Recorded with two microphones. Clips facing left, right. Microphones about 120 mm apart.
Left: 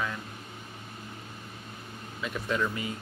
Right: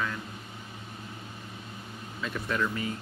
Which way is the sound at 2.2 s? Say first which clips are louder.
Even; 20° left (ahead or behind).